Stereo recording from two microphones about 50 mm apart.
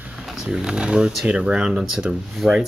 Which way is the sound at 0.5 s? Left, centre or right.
Centre.